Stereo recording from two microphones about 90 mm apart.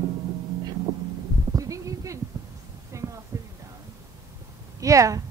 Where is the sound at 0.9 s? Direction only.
50° right (ahead or behind).